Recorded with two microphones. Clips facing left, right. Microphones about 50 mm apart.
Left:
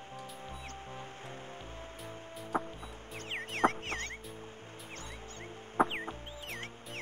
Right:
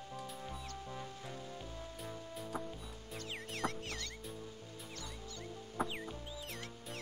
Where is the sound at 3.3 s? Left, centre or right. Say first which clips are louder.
Left 10 dB; left.